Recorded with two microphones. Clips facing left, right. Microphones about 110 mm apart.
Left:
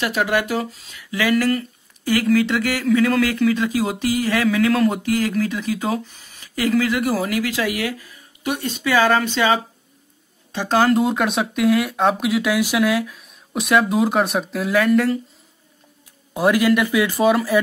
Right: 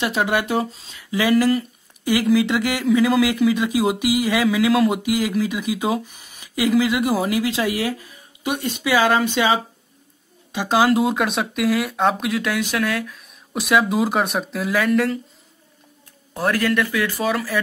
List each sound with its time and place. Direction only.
0.0 s speech: 25° right (ahead or behind); by 15.1 s centre (ahead or behind)
16.3 s speech: 10° left (ahead or behind)